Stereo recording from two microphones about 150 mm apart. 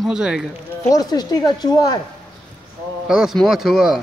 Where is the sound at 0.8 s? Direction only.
25° left (ahead or behind).